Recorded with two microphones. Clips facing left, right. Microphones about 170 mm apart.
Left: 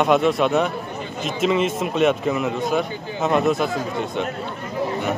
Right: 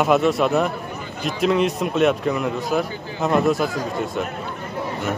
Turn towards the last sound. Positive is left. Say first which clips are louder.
# even
turn(degrees=0)  # may be behind; listen again after turning